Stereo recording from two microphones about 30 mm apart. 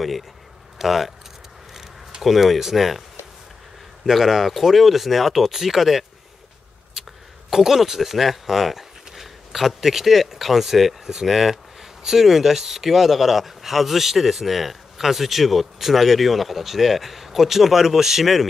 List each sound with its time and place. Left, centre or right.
0.7 s speech: centre
2.2 s speech: centre
4.0 s speech: centre